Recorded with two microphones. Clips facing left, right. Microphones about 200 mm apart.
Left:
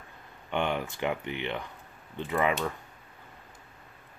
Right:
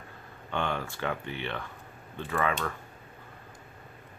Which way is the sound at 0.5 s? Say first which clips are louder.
Left 2 dB; 15° left (ahead or behind).